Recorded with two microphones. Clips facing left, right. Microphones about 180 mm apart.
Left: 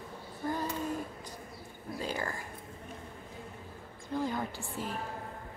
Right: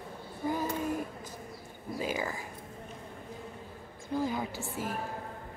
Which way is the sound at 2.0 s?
5° right (ahead or behind).